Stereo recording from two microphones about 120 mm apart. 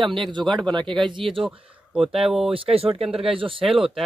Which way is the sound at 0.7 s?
40° right (ahead or behind).